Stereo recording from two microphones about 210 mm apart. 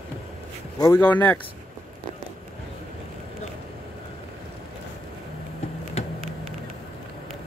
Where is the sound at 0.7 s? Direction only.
15° left (ahead or behind).